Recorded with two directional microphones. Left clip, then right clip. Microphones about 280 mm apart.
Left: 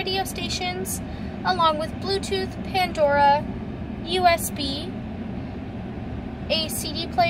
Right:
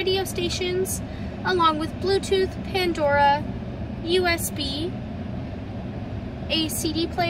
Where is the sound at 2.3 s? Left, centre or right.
Left.